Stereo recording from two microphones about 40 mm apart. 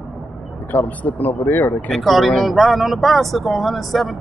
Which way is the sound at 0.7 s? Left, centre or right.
Left.